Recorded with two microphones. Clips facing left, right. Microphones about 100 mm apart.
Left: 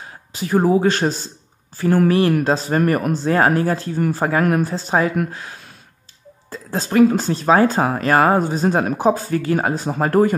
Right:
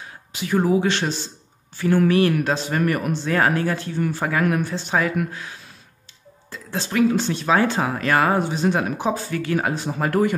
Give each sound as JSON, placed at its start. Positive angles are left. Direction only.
{"t": 0.0, "sound": "speech", "side_deg": 35}
{"t": 6.5, "sound": "speech", "side_deg": 40}